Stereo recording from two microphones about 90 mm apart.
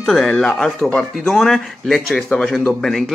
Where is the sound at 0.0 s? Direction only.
5° left (ahead or behind).